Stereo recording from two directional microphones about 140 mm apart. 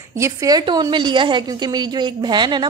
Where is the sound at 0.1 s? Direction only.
20° right (ahead or behind).